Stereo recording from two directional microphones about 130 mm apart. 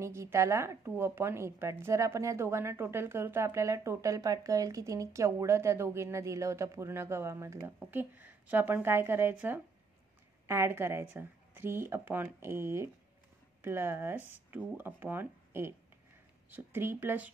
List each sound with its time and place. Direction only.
0.0 s speech: 20° right (ahead or behind)